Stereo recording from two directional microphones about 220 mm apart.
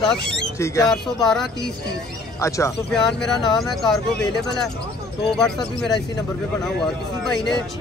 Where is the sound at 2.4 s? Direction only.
15° left (ahead or behind).